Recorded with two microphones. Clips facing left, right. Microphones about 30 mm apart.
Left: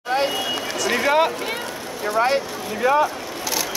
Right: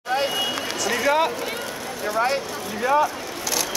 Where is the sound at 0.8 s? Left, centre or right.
Left.